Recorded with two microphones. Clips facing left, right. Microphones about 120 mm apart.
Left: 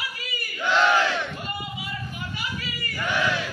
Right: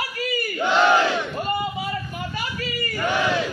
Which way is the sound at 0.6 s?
30° right (ahead or behind).